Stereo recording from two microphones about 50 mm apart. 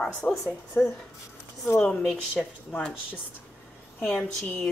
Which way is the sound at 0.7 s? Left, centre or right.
Left.